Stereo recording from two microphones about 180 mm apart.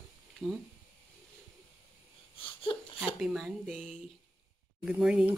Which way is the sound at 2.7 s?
25° left (ahead or behind).